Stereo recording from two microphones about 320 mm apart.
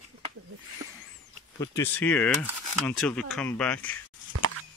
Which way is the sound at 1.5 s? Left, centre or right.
Centre.